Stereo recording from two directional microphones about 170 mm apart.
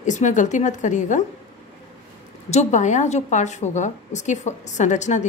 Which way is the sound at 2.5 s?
45° left (ahead or behind).